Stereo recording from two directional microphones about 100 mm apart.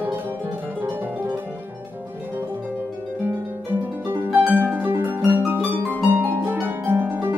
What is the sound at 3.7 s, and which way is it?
Harp, 20° right (ahead or behind).